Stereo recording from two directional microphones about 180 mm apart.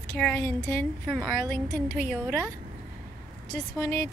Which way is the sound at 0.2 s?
10° left (ahead or behind).